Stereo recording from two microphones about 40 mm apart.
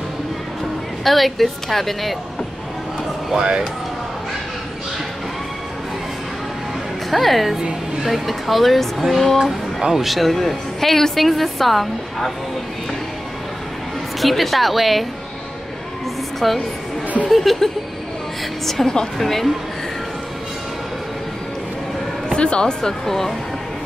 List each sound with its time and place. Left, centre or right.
1.0 s a woman's voice: centre
7.1 s a woman's voice: centre
14.2 s a woman's voice: centre
16.3 s a woman's voice: centre
18.7 s a woman's voice: centre
22.3 s speech: left; by 23.3 s centre